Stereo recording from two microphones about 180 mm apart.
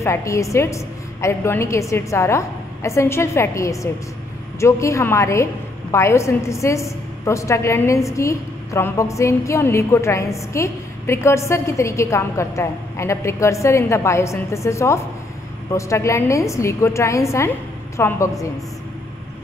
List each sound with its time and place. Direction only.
0.0 s a woman's voice: 15° left (ahead or behind)